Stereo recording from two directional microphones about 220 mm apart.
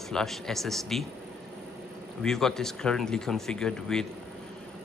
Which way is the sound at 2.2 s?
Centre (ahead or behind).